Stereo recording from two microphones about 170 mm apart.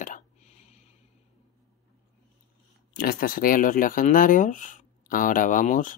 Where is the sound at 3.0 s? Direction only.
60° left (ahead or behind).